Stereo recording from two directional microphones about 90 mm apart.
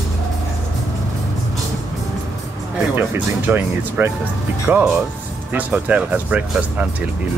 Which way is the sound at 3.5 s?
20° right (ahead or behind).